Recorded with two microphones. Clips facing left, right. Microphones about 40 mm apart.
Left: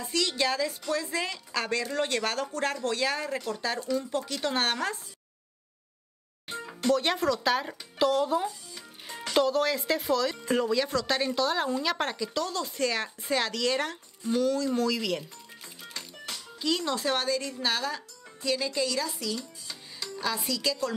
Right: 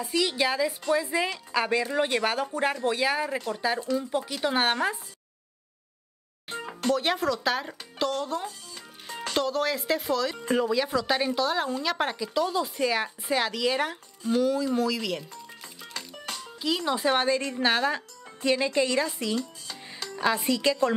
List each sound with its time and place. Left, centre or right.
0.0 s a woman's voice: centre
6.9 s a woman's voice: centre
16.3 s speech: centre; by 19.4 s right
19.7 s music: right
20.2 s a woman's voice: right